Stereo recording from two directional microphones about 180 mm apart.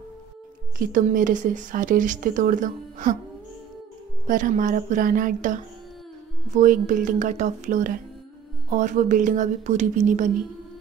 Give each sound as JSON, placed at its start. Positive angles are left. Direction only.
{"t": 0.7, "sound": "speech", "side_deg": -50}
{"t": 4.3, "sound": "speech", "side_deg": -45}